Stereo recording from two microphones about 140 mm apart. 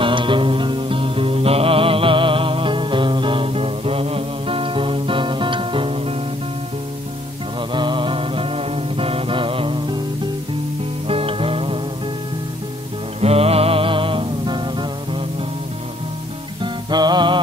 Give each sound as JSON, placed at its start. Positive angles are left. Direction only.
{"t": 0.0, "sound": "music", "side_deg": -35}
{"t": 7.7, "sound": "music", "side_deg": -35}
{"t": 11.1, "sound": "music", "side_deg": -40}
{"t": 13.2, "sound": "music", "side_deg": -45}
{"t": 16.6, "sound": "music", "side_deg": -30}